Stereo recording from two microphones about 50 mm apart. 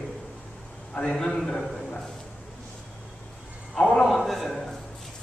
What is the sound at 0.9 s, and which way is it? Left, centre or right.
Speech, centre.